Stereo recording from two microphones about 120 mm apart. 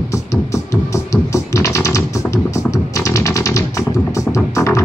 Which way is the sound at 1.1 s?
25° left (ahead or behind).